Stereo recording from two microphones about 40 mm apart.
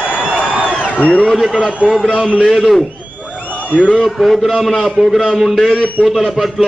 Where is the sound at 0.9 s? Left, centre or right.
Left.